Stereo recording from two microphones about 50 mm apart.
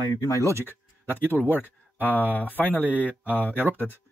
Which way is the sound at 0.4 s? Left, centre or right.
Right.